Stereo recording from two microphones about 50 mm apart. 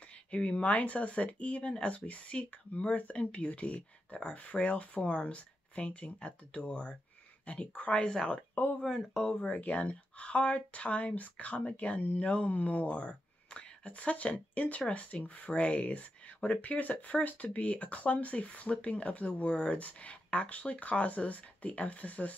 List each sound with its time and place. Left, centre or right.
0.3 s speech: left
9.3 s speech: left
13.1 s a sound: centre
13.8 s speech: left